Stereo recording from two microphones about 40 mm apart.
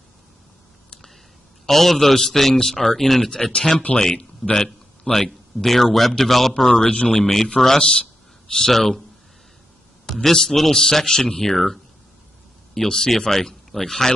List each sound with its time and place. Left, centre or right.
1.7 s a man's voice: centre
3.5 s a man's voice: centre
4.6 s a sound: centre
5.2 s a man's voice: centre
7.8 s speech: left
10.0 s a sound: centre
10.3 s a man's voice: centre